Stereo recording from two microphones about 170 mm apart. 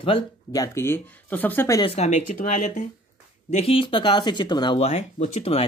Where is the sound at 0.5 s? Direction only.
15° left (ahead or behind).